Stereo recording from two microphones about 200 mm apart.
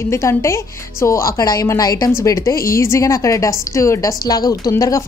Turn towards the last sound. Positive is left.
turn(degrees=15)  # may be behind; listen again after turning